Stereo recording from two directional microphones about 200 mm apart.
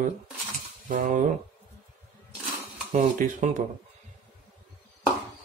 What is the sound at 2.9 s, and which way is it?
Speech, 40° right (ahead or behind).